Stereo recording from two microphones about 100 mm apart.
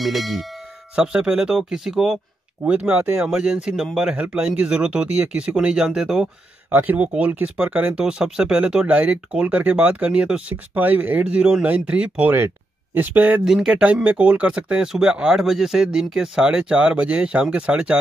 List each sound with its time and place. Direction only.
0.0 s speech: centre (ahead or behind)
6.7 s speech: 15° right (ahead or behind)
13.5 s speech: 5° right (ahead or behind)